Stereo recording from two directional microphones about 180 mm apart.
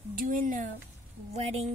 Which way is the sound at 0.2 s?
50° right (ahead or behind).